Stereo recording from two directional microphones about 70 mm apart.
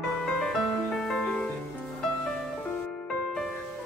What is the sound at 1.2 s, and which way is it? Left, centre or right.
Music, centre.